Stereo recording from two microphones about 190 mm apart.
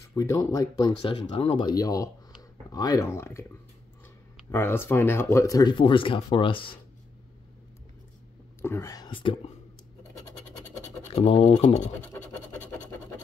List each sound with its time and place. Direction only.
0.1 s speech: 20° left (ahead or behind)
4.5 s speech: 10° left (ahead or behind); by 6.8 s 25° left (ahead or behind)
8.5 s speech: 10° left (ahead or behind)
10.1 s scratch: 10° left (ahead or behind)
11.1 s speech: 30° left (ahead or behind)
12.1 s scratch: 10° left (ahead or behind)